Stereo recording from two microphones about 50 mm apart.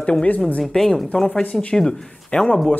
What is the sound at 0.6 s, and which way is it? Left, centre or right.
Speech, centre.